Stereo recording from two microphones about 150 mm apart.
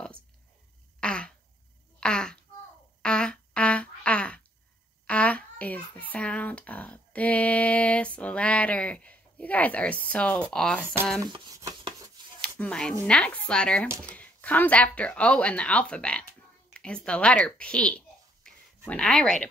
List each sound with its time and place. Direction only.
1.0 s throat clearing: 5° left (ahead or behind)
2.0 s a sound: 5° left (ahead or behind)
3.0 s fart: 5° left (ahead or behind)
5.0 s a child's voice: 10° left (ahead or behind)
11.3 s speech: 25° right (ahead or behind)
12.5 s a child's voice: 5° left (ahead or behind)